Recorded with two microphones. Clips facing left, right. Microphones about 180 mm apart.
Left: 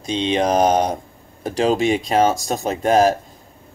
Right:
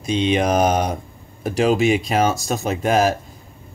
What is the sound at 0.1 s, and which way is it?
Speech, 30° left (ahead or behind).